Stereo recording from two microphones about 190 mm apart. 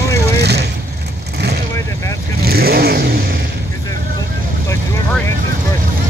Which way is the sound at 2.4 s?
55° right (ahead or behind).